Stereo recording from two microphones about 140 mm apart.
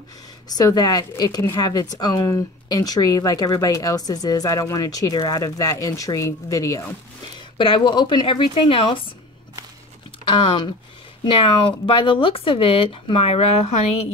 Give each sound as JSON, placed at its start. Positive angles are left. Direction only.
{"t": 0.5, "sound": "speech", "side_deg": 25}
{"t": 7.5, "sound": "speech", "side_deg": 35}
{"t": 10.2, "sound": "speech", "side_deg": 40}